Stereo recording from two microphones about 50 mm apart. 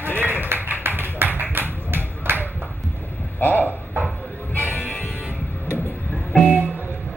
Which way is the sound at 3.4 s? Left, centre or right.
Left.